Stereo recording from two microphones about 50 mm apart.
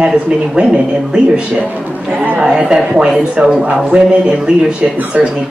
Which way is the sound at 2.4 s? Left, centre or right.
Centre.